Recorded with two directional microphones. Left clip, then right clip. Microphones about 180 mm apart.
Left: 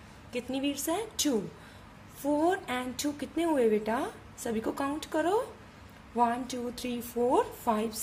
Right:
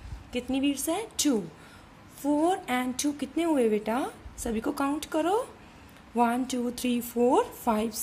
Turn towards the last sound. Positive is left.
turn(degrees=-20)  # may be behind; listen again after turning